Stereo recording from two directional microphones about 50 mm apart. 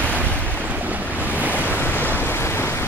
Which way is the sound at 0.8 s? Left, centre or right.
Right.